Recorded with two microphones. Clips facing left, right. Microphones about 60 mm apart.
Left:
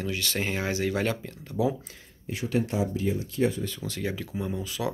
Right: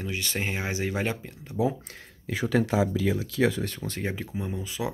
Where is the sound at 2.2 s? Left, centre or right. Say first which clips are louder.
Right 3 dB; right.